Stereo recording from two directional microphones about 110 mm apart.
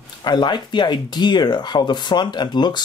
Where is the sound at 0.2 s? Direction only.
40° left (ahead or behind).